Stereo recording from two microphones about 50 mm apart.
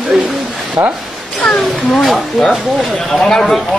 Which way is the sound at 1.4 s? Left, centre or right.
Centre.